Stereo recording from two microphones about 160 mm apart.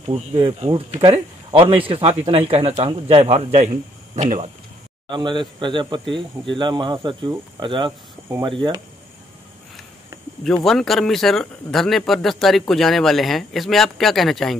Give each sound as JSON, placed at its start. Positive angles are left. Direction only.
{"t": 0.1, "sound": "speech", "side_deg": -40}
{"t": 5.1, "sound": "speech", "side_deg": -30}
{"t": 10.4, "sound": "speech", "side_deg": 5}